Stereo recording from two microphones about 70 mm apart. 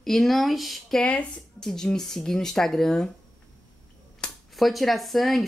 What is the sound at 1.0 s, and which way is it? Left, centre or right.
Speech, centre.